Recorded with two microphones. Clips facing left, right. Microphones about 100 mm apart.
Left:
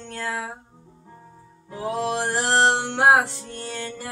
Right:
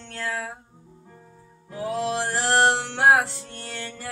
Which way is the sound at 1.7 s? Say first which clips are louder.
Left 1 dB; 25° left (ahead or behind).